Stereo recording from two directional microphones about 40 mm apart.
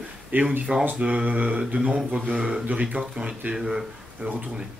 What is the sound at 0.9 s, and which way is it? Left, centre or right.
Speech, right.